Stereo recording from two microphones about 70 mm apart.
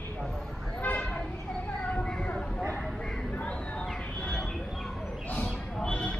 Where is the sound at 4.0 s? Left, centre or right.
Centre.